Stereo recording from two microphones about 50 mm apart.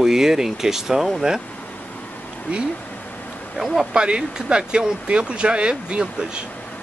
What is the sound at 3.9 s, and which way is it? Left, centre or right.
Speech, centre.